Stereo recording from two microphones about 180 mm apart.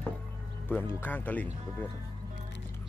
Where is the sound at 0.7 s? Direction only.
10° left (ahead or behind).